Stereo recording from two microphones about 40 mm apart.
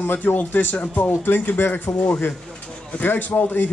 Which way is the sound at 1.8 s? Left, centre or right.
Left.